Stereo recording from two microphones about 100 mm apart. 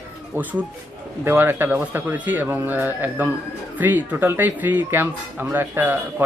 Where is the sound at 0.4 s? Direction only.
15° right (ahead or behind).